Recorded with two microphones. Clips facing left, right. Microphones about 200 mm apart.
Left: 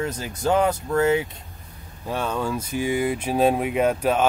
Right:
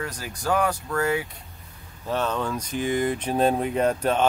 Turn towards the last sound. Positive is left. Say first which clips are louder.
# left 2 dB
turn(degrees=10)  # may be behind; listen again after turning